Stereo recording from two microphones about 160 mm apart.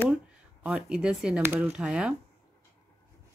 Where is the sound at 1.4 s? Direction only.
15° right (ahead or behind).